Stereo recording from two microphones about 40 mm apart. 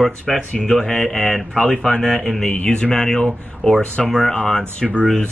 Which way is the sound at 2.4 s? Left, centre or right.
Left.